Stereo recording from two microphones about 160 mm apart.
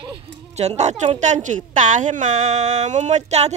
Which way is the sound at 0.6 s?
45° right (ahead or behind).